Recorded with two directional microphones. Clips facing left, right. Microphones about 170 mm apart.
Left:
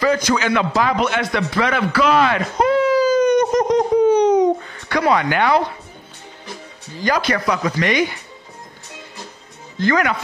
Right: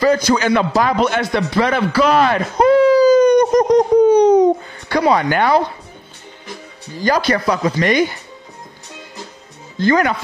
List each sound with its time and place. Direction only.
0.0 s a man's voice: 35° right (ahead or behind)
7.0 s a man's voice: 35° right (ahead or behind)
9.8 s a man's voice: 30° right (ahead or behind)